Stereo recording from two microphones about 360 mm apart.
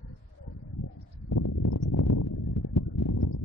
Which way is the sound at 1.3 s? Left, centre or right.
Left.